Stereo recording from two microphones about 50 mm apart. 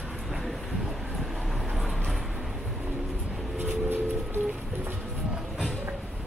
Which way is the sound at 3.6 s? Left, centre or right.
Right.